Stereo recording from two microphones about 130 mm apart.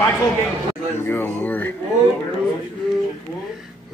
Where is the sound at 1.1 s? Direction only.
15° left (ahead or behind).